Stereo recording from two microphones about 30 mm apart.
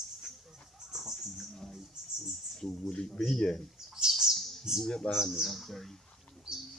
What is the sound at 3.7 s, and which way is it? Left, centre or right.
Bird, centre.